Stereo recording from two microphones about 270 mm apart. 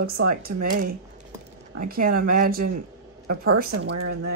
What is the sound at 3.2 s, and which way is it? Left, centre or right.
Speech, right.